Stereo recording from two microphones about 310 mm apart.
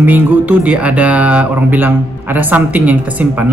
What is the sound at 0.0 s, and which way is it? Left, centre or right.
Speech, centre.